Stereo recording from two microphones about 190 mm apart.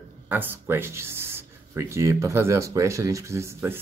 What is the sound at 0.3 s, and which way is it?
Speech, 10° right (ahead or behind).